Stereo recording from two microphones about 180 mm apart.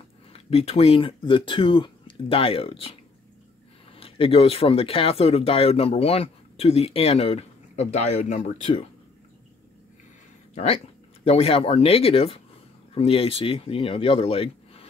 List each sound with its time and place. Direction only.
0.3 s speech: 35° left (ahead or behind)
3.9 s speech: 30° left (ahead or behind)
10.5 s speech: 35° left (ahead or behind)